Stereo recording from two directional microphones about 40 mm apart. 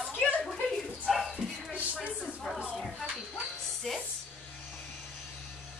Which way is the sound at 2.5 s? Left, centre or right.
Centre.